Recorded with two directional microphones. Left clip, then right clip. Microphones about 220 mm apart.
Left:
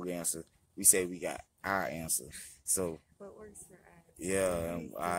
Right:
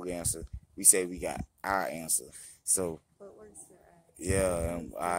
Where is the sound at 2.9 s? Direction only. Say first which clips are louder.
Right 2 dB; centre (ahead or behind).